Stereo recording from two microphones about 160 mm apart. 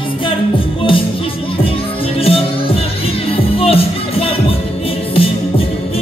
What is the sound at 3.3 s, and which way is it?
Music, 35° left (ahead or behind).